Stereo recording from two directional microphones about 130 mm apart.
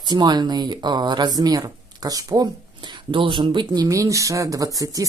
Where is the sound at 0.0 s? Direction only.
35° right (ahead or behind).